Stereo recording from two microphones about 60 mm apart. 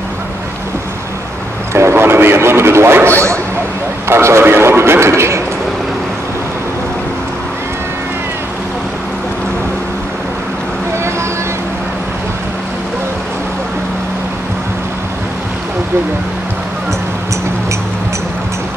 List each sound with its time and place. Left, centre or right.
1.7 s vehicle: right
4.1 s a man's voice: right